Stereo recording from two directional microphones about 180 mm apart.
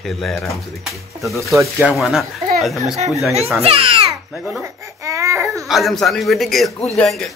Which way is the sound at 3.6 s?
30° right (ahead or behind).